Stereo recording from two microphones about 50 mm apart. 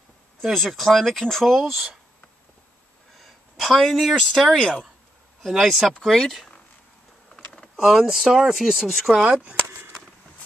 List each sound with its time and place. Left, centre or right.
0.4 s speech: centre
3.2 s speech: centre
5.5 s speech: centre
6.0 s speech: centre
7.3 s a sound: centre
7.8 s speech: centre
9.1 s speech: centre